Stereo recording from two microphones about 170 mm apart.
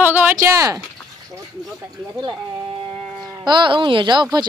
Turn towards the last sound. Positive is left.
turn(degrees=-25)  # may be behind; listen again after turning